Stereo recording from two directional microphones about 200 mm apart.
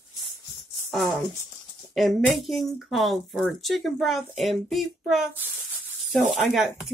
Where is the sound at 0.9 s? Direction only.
Centre (ahead or behind).